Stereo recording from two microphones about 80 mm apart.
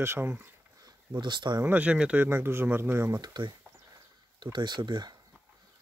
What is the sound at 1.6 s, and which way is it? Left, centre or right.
Speech, centre.